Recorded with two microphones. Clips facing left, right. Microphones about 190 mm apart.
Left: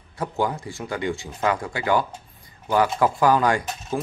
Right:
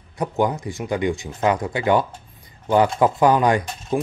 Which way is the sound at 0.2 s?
20° right (ahead or behind).